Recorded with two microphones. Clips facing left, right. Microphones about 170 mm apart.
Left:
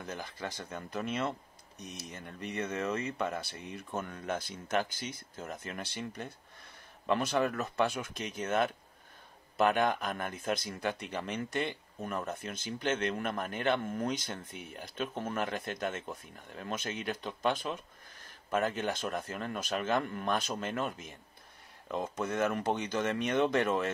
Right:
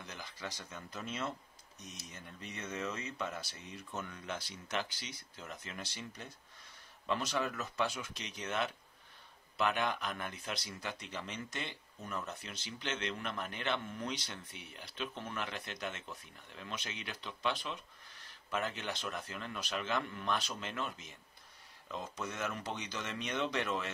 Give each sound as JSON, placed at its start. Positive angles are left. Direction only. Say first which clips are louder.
{"t": 0.0, "sound": "speech", "louder": "left 6 dB", "side_deg": 50}